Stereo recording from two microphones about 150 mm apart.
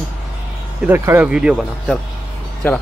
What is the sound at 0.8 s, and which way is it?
Speech, 15° right (ahead or behind).